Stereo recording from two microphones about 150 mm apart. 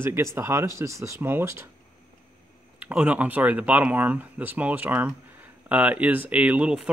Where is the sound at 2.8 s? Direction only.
10° right (ahead or behind).